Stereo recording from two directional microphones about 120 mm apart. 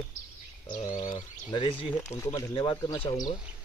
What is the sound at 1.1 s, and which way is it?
Speech, 45° left (ahead or behind).